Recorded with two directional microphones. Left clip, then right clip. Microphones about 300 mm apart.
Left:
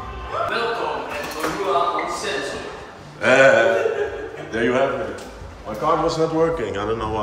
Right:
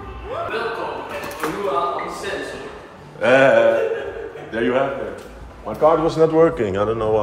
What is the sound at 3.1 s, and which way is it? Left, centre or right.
Speech, centre.